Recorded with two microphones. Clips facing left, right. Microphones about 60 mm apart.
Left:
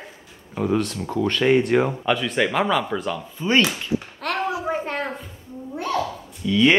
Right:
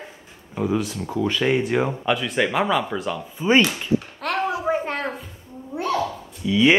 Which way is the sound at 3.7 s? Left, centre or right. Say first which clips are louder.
Right 3 dB; centre.